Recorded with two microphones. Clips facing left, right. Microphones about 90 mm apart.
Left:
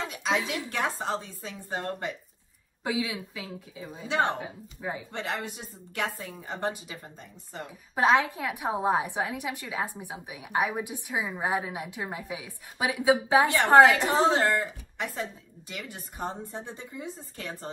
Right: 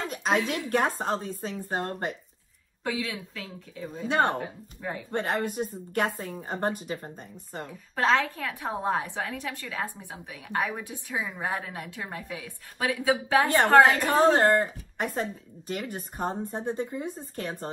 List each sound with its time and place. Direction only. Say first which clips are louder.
0.1 s a sound: right 3 dB; 45° right (ahead or behind)
0.5 s speech: right 4 dB; 45° right (ahead or behind)
2.8 s a woman's voice: left 1 dB; 15° left (ahead or behind)
4.1 s speech: right 2 dB; 45° right (ahead or behind)
4.4 s a woman's voice: right 2 dB; 10° left (ahead or behind)
5.1 s speech: right 6 dB; 45° right (ahead or behind)
7.9 s a woman's voice: left 2 dB; 15° left (ahead or behind)
14.3 s speech: right 4 dB; 45° right (ahead or behind)